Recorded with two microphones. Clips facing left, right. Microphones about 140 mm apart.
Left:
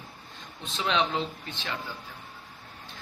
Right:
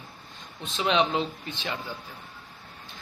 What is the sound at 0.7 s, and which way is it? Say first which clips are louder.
Speech: right 3 dB; 10° right (ahead or behind).